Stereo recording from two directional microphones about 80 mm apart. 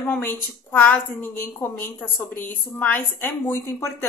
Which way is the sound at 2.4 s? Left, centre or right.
Left.